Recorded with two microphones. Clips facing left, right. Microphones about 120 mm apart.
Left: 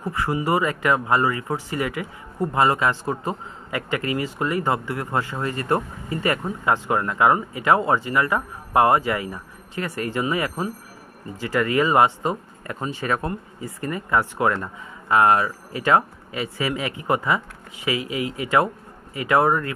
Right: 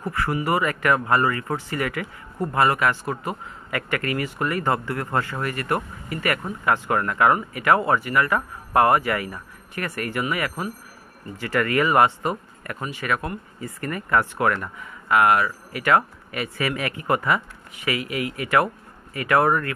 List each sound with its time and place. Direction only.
0.0 s speech: 20° left (ahead or behind)